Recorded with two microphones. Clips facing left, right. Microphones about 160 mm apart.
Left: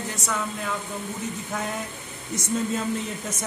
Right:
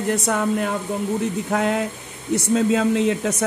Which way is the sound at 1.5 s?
70° right (ahead or behind).